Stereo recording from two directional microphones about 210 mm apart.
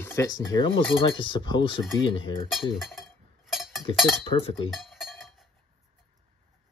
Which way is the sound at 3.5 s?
Centre (ahead or behind).